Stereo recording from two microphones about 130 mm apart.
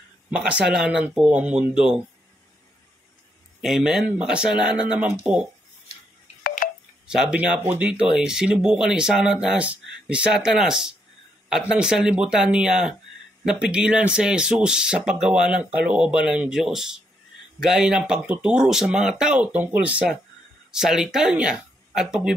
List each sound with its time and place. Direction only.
0.3 s speech: 10° right (ahead or behind)
3.6 s speech: 5° right (ahead or behind)
4.7 s speech: 35° left (ahead or behind)
5.2 s speech: 10° right (ahead or behind)
7.1 s speech: 5° right (ahead or behind)